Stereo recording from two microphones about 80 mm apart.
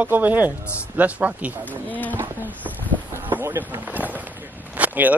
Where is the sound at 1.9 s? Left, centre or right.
Left.